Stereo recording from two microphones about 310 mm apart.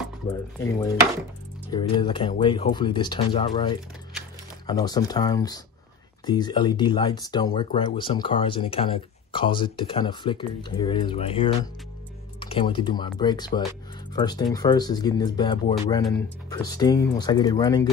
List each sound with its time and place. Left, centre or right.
0.3 s speech: centre